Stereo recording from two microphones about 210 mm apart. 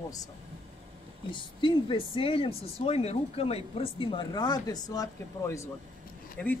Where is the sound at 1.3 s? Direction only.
25° left (ahead or behind).